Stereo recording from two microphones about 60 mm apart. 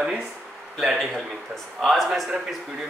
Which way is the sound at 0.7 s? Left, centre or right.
Centre.